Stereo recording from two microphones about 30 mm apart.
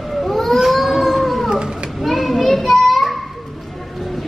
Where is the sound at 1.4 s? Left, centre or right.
Right.